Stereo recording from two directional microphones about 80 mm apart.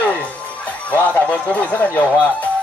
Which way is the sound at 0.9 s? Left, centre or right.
Centre.